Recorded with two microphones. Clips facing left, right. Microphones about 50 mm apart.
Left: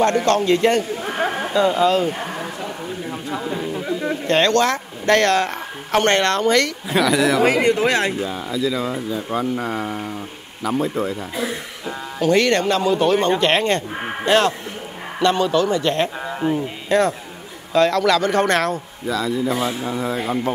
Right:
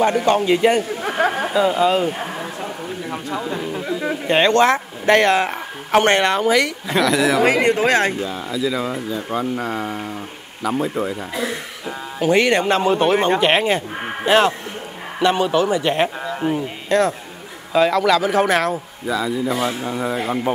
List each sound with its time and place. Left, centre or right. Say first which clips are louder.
0.0 s speech: even; centre
2.1 s a sound: even; centre
4.0 s speech: right 1 dB; centre
6.9 s speech: even; centre
7.4 s speech: right 1 dB; right
8.1 s speech: even; centre
12.7 s speech: right 1 dB; right
13.4 s speech: right 1 dB; centre
16.4 s speech: left 1 dB; right
16.9 s speech: even; centre